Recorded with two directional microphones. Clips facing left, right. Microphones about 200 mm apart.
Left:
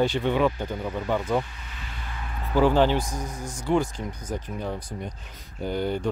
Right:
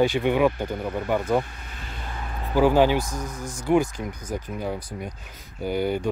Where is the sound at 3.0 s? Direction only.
10° left (ahead or behind).